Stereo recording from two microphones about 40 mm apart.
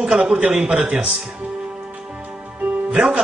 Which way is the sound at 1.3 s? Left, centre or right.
Right.